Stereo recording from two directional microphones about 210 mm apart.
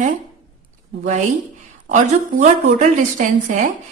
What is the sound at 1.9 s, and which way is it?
Speech, 35° right (ahead or behind).